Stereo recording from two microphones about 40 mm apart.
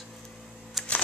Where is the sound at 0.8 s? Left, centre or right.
Centre.